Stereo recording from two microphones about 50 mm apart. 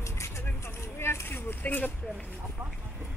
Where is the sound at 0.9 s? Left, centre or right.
Left.